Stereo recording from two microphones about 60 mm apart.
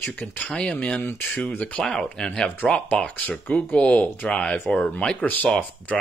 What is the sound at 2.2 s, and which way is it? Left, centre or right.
Speech, centre.